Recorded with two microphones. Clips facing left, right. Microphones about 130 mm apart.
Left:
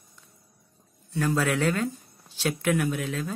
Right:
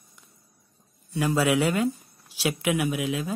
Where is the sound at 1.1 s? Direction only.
10° right (ahead or behind).